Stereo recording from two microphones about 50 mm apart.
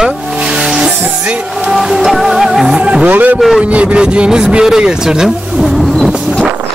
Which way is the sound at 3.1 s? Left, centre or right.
Right.